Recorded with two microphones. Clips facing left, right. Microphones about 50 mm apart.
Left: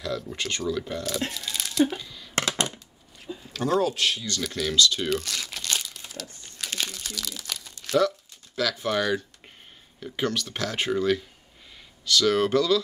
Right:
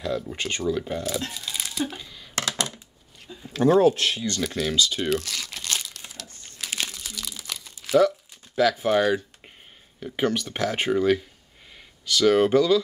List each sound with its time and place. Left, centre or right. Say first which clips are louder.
0.0 s speech: right 2 dB; centre
1.3 s a sound: left 2 dB; centre
2.3 s a sound: left 2 dB; left
3.5 s speech: right 6 dB; right
4.4 s crumpling: left 2 dB; centre
8.5 s speech: right 5 dB; centre